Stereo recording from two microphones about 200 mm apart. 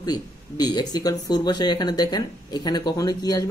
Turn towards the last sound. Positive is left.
turn(degrees=20)  # may be behind; listen again after turning